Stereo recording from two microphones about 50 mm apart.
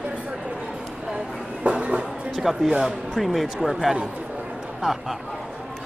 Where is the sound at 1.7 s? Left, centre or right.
Centre.